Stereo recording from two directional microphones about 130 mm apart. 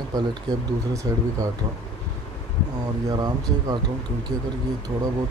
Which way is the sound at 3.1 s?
30° right (ahead or behind).